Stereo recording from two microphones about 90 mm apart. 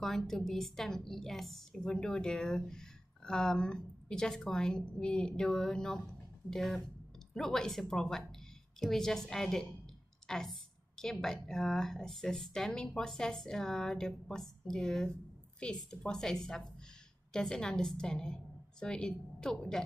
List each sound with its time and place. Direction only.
0.0 s a woman's voice: 5° left (ahead or behind)
10.2 s a sound: 5° left (ahead or behind)
11.4 s a woman's voice: 5° left (ahead or behind)